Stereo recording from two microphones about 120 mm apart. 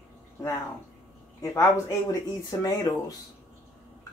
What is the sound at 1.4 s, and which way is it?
Speech, 25° left (ahead or behind).